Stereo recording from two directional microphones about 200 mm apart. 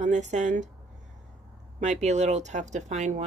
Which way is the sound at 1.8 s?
35° right (ahead or behind).